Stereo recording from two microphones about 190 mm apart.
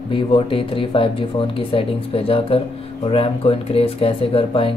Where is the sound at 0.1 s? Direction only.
25° left (ahead or behind).